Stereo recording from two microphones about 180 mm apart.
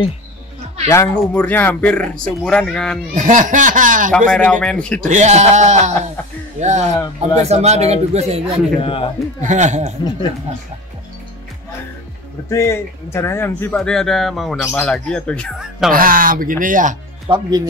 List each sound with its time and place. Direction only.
0.8 s speech: 15° left (ahead or behind)
3.2 s speech: 45° right (ahead or behind)
4.3 s speech: 5° left (ahead or behind)
5.1 s a man's voice: 40° right (ahead or behind)
8.8 s speech: 30° left (ahead or behind)
9.4 s a man's voice: 40° right (ahead or behind)
12.4 s speech: 15° left (ahead or behind); by 15.9 s centre (ahead or behind)
15.9 s speech: 50° right (ahead or behind)
17.3 s speech: 25° right (ahead or behind)